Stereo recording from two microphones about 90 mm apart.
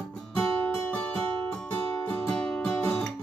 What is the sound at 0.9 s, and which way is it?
Music, 15° left (ahead or behind).